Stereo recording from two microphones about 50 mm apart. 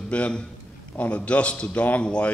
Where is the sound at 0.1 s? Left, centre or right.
Left.